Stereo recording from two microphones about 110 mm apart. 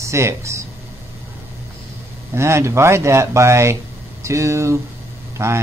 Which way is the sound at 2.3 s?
25° right (ahead or behind).